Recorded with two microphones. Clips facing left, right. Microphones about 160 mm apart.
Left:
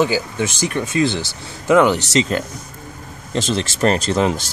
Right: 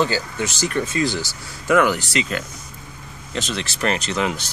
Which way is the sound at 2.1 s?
35° left (ahead or behind).